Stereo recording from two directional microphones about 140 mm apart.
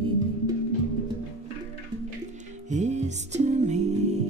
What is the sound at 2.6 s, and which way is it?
Music, 55° right (ahead or behind).